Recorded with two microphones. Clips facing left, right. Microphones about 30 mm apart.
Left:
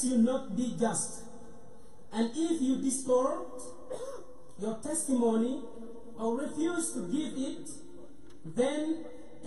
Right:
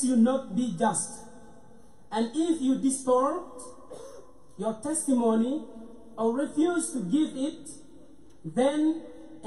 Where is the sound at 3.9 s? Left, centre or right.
Left.